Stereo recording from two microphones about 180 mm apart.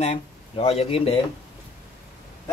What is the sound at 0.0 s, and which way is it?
Speech, 35° left (ahead or behind).